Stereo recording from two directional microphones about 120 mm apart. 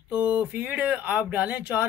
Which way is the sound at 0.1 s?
10° right (ahead or behind).